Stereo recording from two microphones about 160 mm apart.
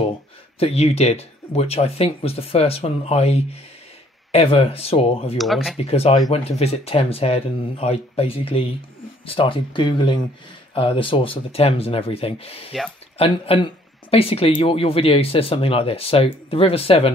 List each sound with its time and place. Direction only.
0.6 s speech: 40° left (ahead or behind)
5.4 s speech: centre (ahead or behind)
5.8 s speech: 40° left (ahead or behind)